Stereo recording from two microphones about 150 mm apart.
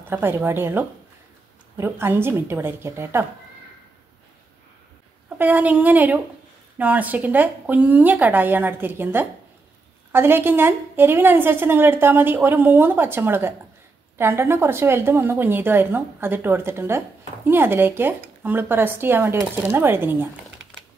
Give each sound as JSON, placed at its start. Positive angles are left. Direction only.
{"t": 0.1, "sound": "a woman's voice", "side_deg": -15}
{"t": 5.4, "sound": "a woman's voice", "side_deg": -10}